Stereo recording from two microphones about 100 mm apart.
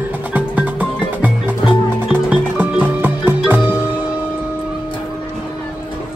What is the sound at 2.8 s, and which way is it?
Music, 20° right (ahead or behind).